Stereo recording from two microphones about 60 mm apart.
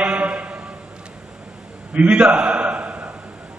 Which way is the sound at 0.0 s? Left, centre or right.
Centre.